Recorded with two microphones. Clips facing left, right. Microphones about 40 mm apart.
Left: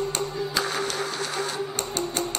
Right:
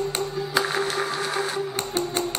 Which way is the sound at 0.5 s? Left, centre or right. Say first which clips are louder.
Right 4 dB; centre.